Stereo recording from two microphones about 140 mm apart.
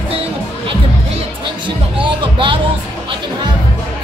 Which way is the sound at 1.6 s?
35° right (ahead or behind).